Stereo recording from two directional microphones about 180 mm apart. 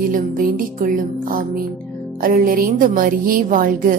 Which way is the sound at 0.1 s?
50° right (ahead or behind).